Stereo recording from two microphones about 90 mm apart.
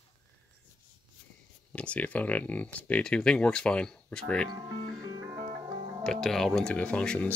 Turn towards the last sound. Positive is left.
turn(degrees=10)  # may be behind; listen again after turning